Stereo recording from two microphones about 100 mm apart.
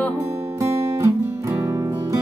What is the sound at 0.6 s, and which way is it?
Music, 30° right (ahead or behind).